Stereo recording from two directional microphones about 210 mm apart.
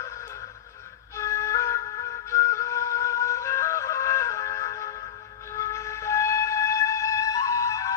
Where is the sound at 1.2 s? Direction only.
15° left (ahead or behind).